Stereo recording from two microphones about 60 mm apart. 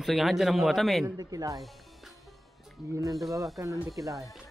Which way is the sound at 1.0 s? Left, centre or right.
Right.